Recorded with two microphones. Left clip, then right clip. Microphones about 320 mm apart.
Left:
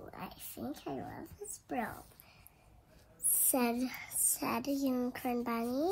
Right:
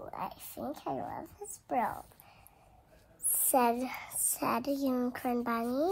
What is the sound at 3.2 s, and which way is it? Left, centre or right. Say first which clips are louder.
A child's voice: right 6 dB; centre.